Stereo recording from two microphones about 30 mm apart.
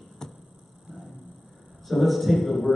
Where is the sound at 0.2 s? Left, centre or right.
Centre.